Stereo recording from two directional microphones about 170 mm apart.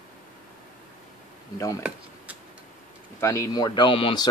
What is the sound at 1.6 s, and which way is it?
Speech, 20° left (ahead or behind).